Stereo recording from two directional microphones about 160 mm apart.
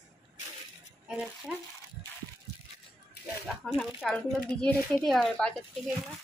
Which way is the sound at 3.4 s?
Centre (ahead or behind).